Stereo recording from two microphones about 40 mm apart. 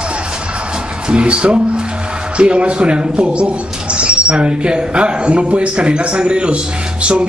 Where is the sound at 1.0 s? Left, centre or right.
Right.